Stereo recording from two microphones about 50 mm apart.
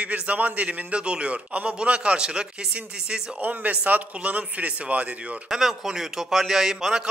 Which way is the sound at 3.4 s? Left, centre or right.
Right.